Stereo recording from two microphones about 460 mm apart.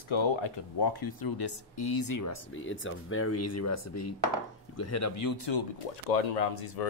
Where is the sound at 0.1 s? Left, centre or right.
Left.